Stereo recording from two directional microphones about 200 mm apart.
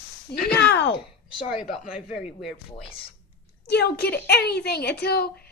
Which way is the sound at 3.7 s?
55° left (ahead or behind).